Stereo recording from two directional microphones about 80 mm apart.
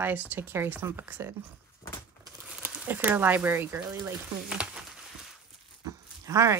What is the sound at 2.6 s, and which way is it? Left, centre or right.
Speech, right.